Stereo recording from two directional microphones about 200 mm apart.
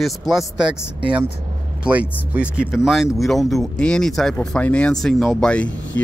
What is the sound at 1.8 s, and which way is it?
Speech, 5° right (ahead or behind).